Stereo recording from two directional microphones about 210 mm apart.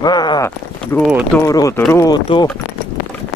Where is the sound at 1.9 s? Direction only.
20° left (ahead or behind).